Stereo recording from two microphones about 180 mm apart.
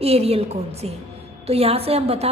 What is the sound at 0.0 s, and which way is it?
A woman's voice, 35° right (ahead or behind).